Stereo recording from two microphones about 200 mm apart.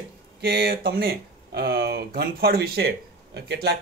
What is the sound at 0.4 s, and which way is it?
Speech, 50° right (ahead or behind).